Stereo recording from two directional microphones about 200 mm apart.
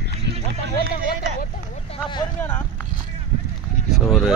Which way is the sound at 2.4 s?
10° left (ahead or behind).